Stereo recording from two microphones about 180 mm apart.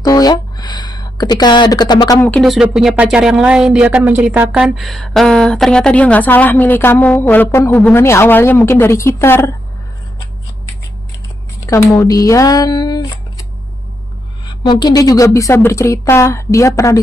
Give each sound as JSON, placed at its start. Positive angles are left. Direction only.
{"t": 0.0, "sound": "a sound", "side_deg": 20}
{"t": 2.2, "sound": "speech", "side_deg": 5}
{"t": 11.6, "sound": "speech", "side_deg": 15}
{"t": 14.6, "sound": "a woman's voice", "side_deg": 25}